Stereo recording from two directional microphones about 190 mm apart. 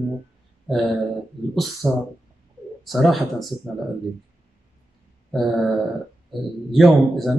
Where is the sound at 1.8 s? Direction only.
5° right (ahead or behind).